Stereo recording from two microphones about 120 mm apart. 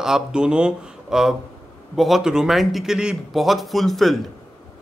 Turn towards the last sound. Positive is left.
turn(degrees=0)  # may be behind; listen again after turning